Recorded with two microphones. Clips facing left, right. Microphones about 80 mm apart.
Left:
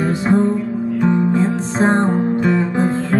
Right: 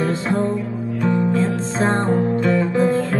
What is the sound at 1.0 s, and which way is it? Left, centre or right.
Music, left.